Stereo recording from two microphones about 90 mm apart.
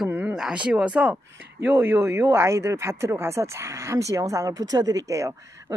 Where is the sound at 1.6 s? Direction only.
25° right (ahead or behind).